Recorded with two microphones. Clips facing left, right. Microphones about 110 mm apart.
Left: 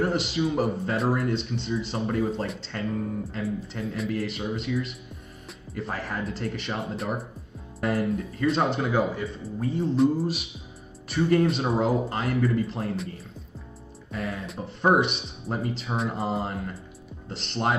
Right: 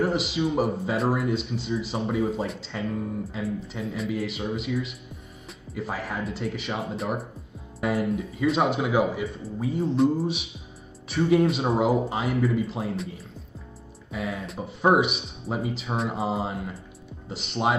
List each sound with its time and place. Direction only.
0.0 s speech: centre (ahead or behind)
14.1 s speech: 5° right (ahead or behind)